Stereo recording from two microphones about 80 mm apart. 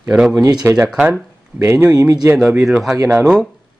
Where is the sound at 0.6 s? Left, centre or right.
Right.